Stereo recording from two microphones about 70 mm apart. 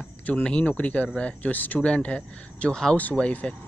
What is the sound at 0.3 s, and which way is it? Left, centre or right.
Speech, centre.